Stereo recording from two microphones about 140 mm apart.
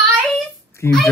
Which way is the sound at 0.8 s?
20° left (ahead or behind).